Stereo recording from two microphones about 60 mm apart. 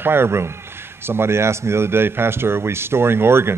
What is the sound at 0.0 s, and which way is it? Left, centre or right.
A man's voice, right.